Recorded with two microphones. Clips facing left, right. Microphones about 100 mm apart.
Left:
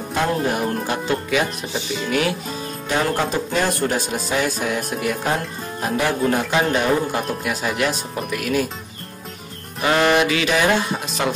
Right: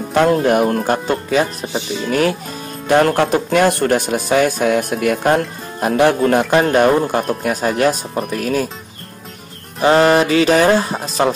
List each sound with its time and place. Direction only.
0.1 s speech: 60° right (ahead or behind); by 2.3 s 40° right (ahead or behind)
2.9 s speech: 60° right (ahead or behind); by 8.6 s 40° right (ahead or behind)
9.8 s speech: 35° right (ahead or behind)